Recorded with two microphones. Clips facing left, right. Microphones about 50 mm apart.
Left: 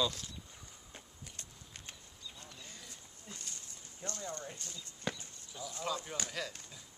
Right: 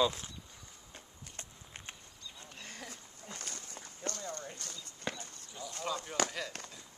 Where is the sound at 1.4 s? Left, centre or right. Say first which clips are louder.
Right 3 dB; right.